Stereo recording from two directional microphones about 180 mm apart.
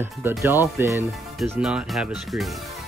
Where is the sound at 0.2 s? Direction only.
15° right (ahead or behind).